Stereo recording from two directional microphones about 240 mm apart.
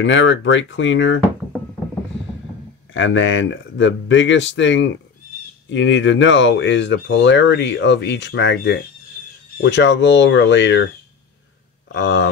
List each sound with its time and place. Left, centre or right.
0.0 s speech: left
2.9 s speech: left
11.9 s speech: left